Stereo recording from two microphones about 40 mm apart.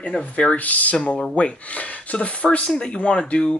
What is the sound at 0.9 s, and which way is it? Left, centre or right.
Speech, left.